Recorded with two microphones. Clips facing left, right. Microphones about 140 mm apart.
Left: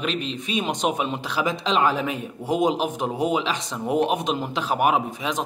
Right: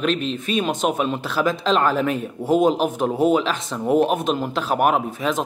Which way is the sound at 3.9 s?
15° left (ahead or behind).